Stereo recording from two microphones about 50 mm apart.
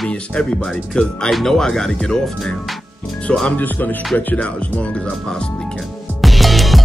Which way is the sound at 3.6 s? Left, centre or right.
Left.